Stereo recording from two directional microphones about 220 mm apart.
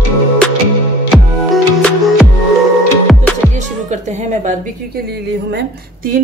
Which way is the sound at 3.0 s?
5° left (ahead or behind).